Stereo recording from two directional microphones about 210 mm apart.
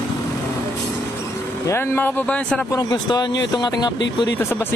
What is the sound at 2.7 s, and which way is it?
Speech, 20° left (ahead or behind).